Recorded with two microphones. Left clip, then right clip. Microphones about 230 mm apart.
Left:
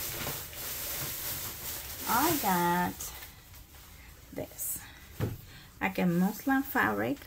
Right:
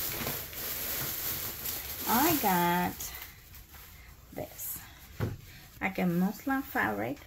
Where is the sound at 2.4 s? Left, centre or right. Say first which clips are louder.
Even; centre.